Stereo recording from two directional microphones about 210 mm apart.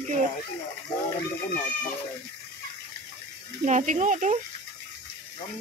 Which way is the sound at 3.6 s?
35° right (ahead or behind).